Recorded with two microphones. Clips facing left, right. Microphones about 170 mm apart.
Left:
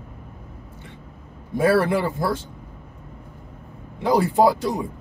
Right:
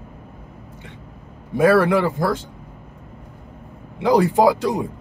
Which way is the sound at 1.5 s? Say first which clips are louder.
Right 3 dB; 65° right (ahead or behind).